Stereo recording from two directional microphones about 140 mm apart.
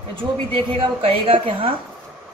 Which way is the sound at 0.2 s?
40° right (ahead or behind).